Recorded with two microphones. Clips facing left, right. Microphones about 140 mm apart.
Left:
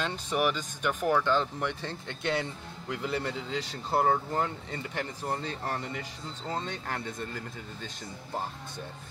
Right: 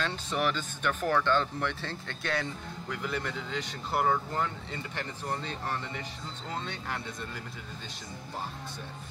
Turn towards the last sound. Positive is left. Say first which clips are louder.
# left 2 dB
turn(degrees=50)  # may be behind; listen again after turning